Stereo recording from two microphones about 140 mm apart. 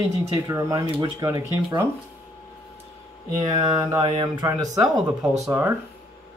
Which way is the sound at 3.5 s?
30° right (ahead or behind).